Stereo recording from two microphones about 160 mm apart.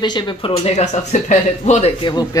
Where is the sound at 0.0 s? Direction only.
30° left (ahead or behind); by 1.9 s 45° left (ahead or behind).